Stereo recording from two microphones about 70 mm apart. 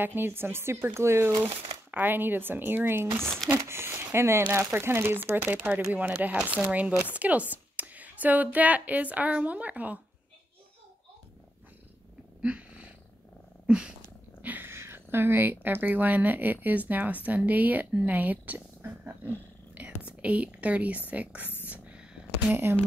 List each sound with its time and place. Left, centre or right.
0.0 s speech: right
1.4 s speech: right
3.2 s speech: centre
3.5 s speech: right
12.4 s cat: centre
13.7 s purr: centre
14.4 s speech: right
19.7 s whispering: right
21.1 s speech: centre
21.6 s purr: right
22.5 s speech: right